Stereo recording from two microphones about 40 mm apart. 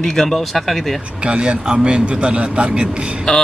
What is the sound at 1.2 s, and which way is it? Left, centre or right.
A man's voice, right.